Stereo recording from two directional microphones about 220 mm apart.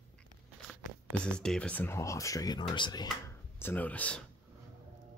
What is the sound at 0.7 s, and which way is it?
Speech, 5° left (ahead or behind).